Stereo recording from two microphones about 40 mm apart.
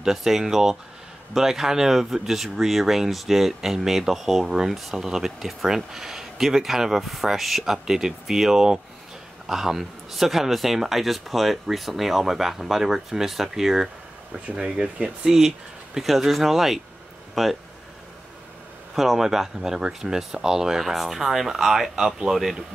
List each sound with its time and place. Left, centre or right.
0.0 s speech: centre
14.5 s speech: right
15.3 s speech: centre
18.9 s speech: centre